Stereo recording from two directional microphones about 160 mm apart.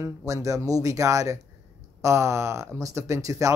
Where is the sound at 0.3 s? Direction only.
20° right (ahead or behind).